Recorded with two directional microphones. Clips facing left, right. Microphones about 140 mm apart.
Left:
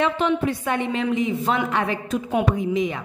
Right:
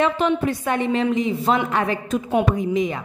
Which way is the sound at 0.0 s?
40° right (ahead or behind).